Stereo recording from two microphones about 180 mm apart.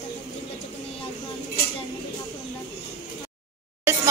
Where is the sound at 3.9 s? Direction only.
15° right (ahead or behind).